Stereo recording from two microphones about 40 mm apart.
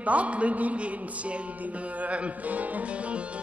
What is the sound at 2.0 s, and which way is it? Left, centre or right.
Music, right.